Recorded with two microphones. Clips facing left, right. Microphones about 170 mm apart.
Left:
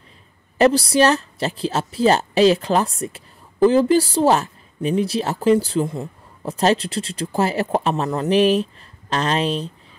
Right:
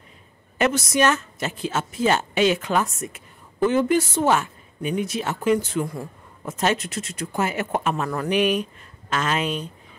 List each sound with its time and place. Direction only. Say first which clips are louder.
0.6 s a woman's voice: left 6 dB; 35° left (ahead or behind)